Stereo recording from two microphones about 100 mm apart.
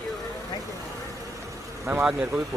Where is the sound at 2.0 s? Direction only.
5° right (ahead or behind).